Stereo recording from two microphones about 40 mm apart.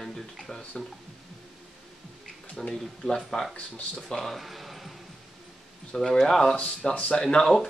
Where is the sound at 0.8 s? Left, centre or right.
Left.